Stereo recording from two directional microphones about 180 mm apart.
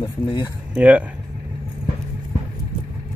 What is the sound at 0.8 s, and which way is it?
Speech, 5° right (ahead or behind).